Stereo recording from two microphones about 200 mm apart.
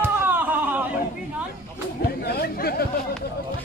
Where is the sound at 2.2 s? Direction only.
50° left (ahead or behind).